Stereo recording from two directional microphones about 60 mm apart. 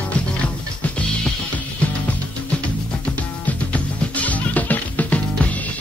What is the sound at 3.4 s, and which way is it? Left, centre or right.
Music, left.